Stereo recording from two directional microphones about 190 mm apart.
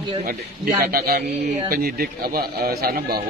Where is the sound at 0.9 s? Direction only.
50° right (ahead or behind).